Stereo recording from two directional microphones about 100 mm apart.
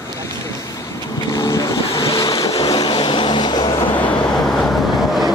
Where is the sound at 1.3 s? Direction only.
35° left (ahead or behind).